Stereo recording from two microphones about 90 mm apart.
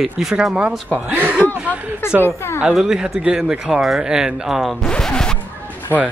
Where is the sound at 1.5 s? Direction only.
15° right (ahead or behind).